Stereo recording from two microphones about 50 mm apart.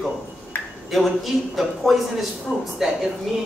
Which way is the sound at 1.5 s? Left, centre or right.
Centre.